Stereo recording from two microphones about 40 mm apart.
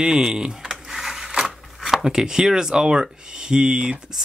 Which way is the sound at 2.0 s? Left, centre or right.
Centre.